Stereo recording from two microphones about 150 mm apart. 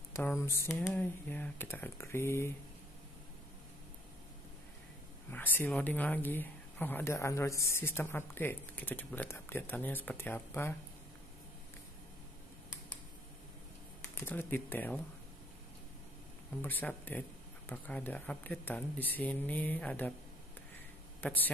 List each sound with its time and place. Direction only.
0.1 s speech: 15° left (ahead or behind)
5.3 s speech: 10° left (ahead or behind)
14.0 s speech: 15° left (ahead or behind)
16.6 s speech: 10° left (ahead or behind)
21.2 s speech: 10° left (ahead or behind)